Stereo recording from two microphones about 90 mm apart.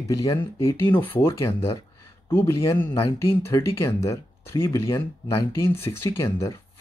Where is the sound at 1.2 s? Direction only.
35° left (ahead or behind).